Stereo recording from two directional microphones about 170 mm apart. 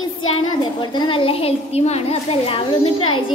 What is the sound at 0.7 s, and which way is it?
A child's voice, 30° left (ahead or behind).